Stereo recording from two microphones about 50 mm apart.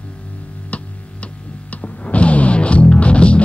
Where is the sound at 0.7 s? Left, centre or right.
Left.